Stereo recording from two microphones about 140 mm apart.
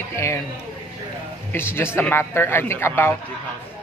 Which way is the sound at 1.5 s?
15° left (ahead or behind).